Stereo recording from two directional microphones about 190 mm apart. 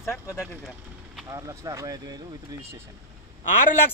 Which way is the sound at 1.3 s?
20° right (ahead or behind).